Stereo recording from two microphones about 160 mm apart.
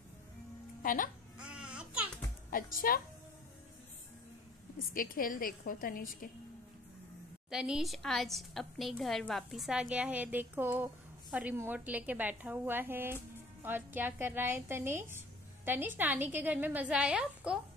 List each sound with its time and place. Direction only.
0.8 s a woman's voice: 60° left (ahead or behind)
1.5 s baby cry: 5° right (ahead or behind)
2.5 s a woman's voice: 60° left (ahead or behind)
4.9 s a woman's voice: 60° left (ahead or behind)
7.4 s a woman's voice: 5° right (ahead or behind)